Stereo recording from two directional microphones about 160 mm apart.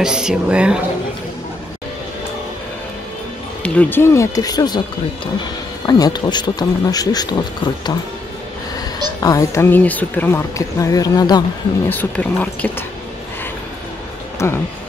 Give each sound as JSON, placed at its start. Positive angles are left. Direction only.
{"t": 0.0, "sound": "speech", "side_deg": -5}
{"t": 3.6, "sound": "speech", "side_deg": 10}
{"t": 9.2, "sound": "speech", "side_deg": 20}
{"t": 11.9, "sound": "speech", "side_deg": 10}
{"t": 14.4, "sound": "speech", "side_deg": 15}